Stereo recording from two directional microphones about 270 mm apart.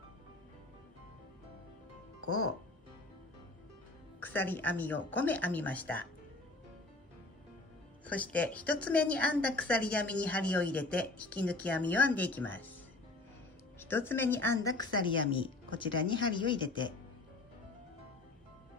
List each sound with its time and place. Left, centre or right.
4.2 s speech: centre
8.0 s a woman's voice: centre
13.7 s speech: centre